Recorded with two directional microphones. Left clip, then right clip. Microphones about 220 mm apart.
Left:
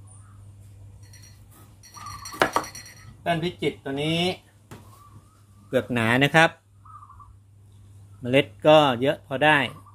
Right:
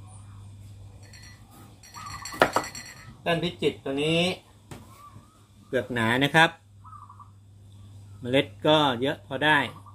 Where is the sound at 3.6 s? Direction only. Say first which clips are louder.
Right 1 dB; 35° left (ahead or behind).